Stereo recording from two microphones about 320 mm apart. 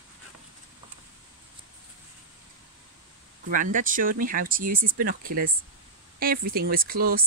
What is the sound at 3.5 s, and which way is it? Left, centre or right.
Speech, right.